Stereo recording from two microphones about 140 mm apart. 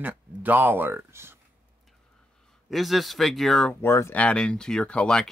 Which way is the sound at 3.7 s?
20° left (ahead or behind).